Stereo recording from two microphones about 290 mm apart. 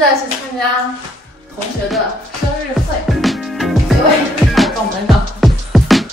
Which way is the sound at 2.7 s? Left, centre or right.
Centre.